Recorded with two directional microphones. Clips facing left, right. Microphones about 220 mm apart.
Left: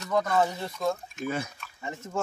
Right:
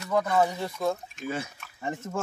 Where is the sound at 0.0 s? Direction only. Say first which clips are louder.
Right 1 dB; 10° right (ahead or behind).